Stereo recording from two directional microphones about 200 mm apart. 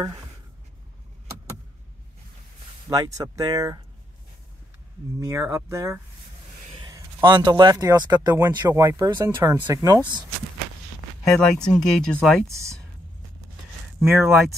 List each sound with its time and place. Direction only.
2.9 s speech: 15° right (ahead or behind)
5.2 s speech: 15° right (ahead or behind)
11.2 s speech: 5° left (ahead or behind)
12.4 s speech: 15° right (ahead or behind)
13.9 s speech: 5° right (ahead or behind)